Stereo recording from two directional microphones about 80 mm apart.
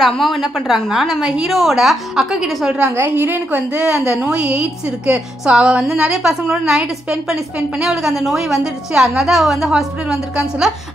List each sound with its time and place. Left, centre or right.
0.0 s a woman's voice: centre
3.0 s a woman's voice: right
3.8 s a woman's voice: centre